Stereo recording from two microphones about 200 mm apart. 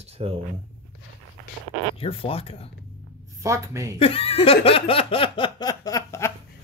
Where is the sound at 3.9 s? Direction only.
30° left (ahead or behind).